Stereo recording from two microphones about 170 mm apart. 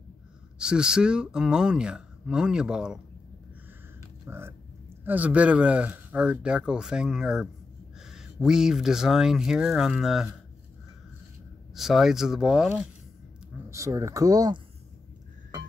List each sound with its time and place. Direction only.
0.6 s speech: 5° right (ahead or behind)
4.3 s speech: 15° right (ahead or behind)
11.7 s speech: centre (ahead or behind)
13.7 s speech: 20° right (ahead or behind)